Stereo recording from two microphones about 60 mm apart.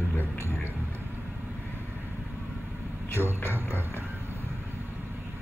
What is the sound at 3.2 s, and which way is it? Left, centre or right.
Speech, right.